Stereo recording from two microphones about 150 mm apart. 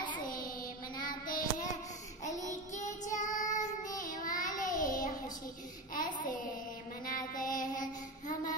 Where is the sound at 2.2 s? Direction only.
50° left (ahead or behind).